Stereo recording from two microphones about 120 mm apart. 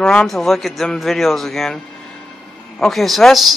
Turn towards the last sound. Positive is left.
turn(degrees=0)  # may be behind; listen again after turning